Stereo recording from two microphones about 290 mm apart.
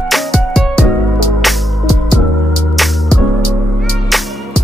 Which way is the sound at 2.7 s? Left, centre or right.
Centre.